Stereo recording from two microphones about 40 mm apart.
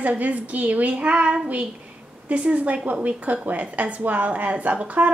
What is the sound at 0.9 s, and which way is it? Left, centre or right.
Child singing, right.